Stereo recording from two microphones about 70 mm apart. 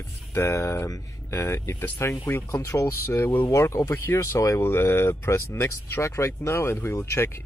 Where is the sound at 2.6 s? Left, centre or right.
Left.